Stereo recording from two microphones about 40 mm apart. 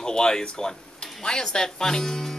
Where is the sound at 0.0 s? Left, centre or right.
Centre.